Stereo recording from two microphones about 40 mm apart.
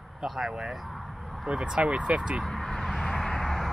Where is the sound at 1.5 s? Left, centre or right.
Right.